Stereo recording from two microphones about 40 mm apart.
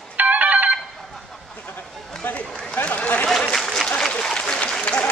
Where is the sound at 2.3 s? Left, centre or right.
Left.